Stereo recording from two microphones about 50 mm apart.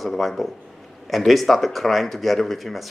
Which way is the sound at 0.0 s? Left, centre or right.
Centre.